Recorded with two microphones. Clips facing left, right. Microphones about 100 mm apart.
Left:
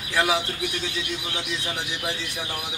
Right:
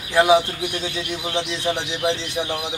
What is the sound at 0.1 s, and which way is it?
Speech, 20° right (ahead or behind).